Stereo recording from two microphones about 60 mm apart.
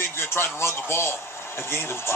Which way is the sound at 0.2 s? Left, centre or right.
Left.